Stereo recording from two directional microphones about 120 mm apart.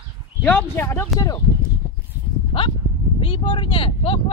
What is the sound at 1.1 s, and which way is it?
Speech, centre (ahead or behind).